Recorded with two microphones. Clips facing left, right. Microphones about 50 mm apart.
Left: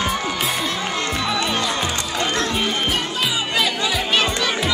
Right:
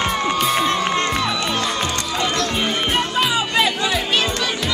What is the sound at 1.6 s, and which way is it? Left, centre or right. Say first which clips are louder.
Music: right 1 dB; centre.